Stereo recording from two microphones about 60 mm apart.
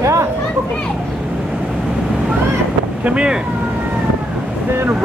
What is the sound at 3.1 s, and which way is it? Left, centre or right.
Speech, centre.